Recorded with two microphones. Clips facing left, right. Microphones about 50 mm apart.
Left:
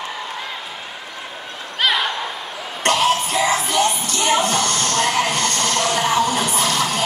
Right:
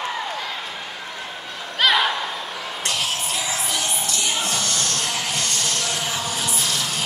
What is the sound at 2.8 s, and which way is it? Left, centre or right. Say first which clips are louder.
Music: left 10 dB; left.